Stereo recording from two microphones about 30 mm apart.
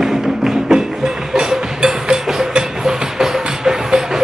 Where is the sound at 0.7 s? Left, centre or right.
Right.